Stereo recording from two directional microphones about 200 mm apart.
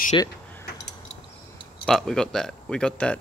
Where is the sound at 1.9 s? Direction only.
Centre (ahead or behind).